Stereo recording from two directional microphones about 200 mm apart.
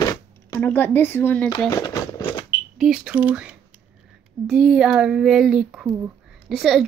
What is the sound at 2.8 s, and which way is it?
Speech, 5° right (ahead or behind).